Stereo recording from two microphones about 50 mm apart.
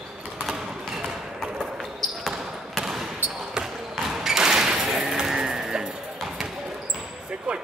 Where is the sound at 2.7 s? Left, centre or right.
Centre.